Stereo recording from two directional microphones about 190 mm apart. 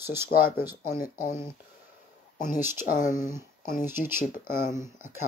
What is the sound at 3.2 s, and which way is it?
Speech, 15° right (ahead or behind).